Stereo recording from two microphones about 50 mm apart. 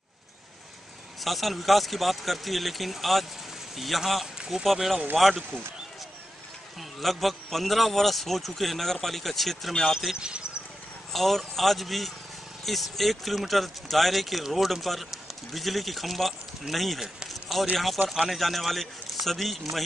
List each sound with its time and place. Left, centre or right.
1.2 s speech: centre
6.8 s speech: centre
10.1 s speech: centre
11.1 s speech: centre
17.3 s a sound: centre
18.2 s speech: centre